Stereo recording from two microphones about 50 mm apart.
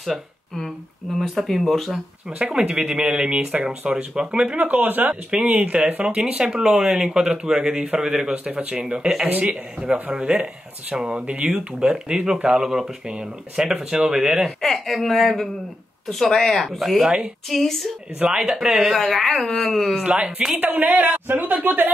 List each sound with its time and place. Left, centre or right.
1.2 s speech: centre
1.9 s speech: centre
4.6 s speech: right
6.0 s speech: centre
8.5 s speech: right
8.8 s speech: centre
9.2 s speech: right
10.1 s speech: centre
12.4 s speech: centre
14.6 s speech: centre
20.0 s speech: centre
20.5 s speech: right